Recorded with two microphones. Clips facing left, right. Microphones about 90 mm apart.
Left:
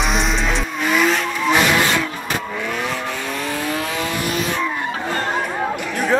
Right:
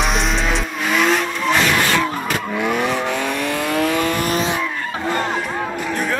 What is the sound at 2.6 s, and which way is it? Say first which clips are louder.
Vehicle: right 8 dB; 60° right (ahead or behind).